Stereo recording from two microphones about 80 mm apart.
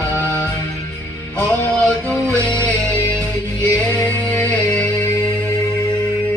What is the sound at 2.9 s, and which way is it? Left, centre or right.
Music, left.